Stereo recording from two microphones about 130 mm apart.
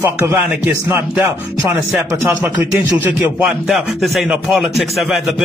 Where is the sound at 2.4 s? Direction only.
15° right (ahead or behind).